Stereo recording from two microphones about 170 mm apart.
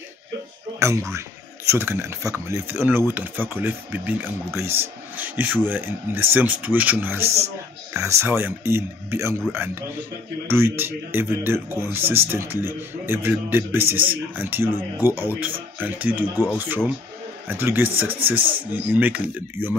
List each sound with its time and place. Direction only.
0.7 s speech: 15° right (ahead or behind)